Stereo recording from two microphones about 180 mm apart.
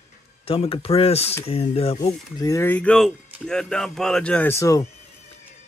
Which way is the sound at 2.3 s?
20° left (ahead or behind).